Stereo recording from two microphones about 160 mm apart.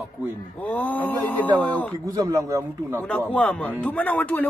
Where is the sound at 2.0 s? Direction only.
20° right (ahead or behind).